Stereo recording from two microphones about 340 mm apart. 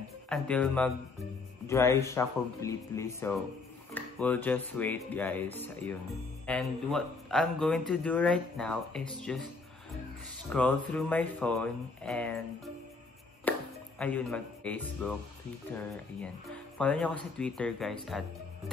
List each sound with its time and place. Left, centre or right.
0.3 s speech: centre
10.5 s speech: centre
13.5 s music: centre
15.7 s speech: centre